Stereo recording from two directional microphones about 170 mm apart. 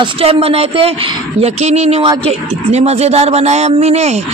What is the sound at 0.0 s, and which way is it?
A woman's voice, 35° right (ahead or behind).